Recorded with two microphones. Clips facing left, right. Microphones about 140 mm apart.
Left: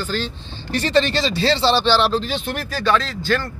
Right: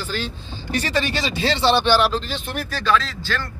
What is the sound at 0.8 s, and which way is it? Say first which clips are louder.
Speech: left 5 dB; 10° right (ahead or behind).